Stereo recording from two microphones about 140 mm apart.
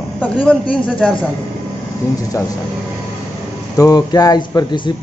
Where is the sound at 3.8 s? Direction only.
25° left (ahead or behind).